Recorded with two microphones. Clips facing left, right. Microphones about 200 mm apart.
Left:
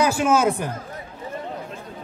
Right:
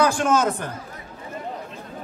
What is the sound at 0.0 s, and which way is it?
Speech, 5° left (ahead or behind).